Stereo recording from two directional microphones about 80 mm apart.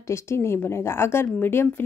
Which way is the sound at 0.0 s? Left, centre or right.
Left.